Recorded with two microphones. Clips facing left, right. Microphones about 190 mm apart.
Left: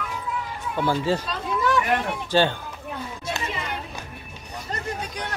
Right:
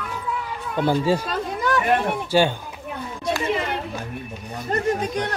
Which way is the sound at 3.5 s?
55° right (ahead or behind).